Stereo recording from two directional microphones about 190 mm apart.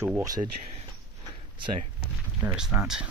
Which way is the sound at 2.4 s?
5° right (ahead or behind).